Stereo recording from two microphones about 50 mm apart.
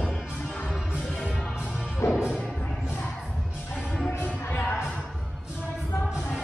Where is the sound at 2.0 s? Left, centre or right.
Left.